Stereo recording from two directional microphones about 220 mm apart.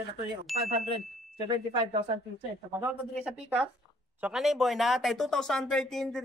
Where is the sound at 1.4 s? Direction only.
20° right (ahead or behind).